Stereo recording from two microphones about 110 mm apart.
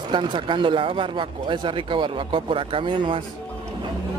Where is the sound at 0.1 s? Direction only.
45° right (ahead or behind).